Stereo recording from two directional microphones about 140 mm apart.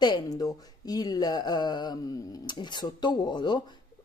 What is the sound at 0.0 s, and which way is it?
Speech, 30° left (ahead or behind).